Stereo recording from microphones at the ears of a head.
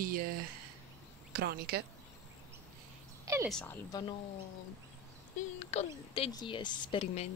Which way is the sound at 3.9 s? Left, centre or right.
Left.